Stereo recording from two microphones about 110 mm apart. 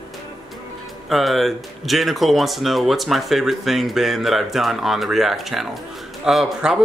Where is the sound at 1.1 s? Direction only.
Centre (ahead or behind).